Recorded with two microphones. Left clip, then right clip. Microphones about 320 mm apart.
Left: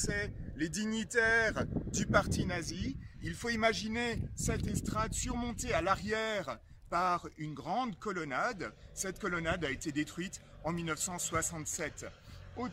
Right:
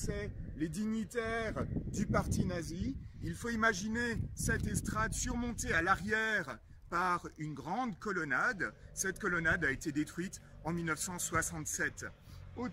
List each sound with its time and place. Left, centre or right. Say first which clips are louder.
0.0 s speech: left 5 dB; left
2.5 s a man's voice: left 2 dB; left